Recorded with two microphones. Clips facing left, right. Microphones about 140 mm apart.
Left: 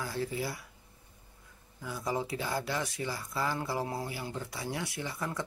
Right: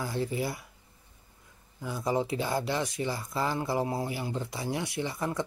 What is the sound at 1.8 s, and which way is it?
Speech, 20° right (ahead or behind).